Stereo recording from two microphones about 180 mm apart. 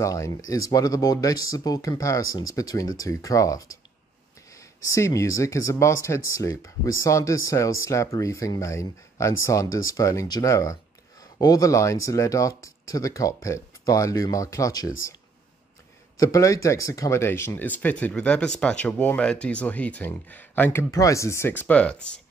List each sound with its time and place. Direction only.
0.0 s speech: 15° left (ahead or behind)
16.2 s speech: 20° left (ahead or behind)